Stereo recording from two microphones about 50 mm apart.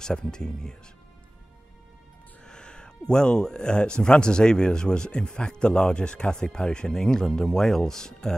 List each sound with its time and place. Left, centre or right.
0.0 s speech: centre
2.4 s speech: centre